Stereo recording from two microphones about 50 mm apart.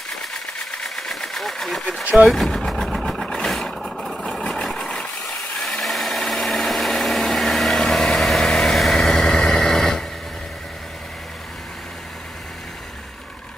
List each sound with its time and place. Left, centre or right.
0.3 s engine: centre
2.2 s vehicle: centre
5.9 s engine: centre
8.9 s vehicle: centre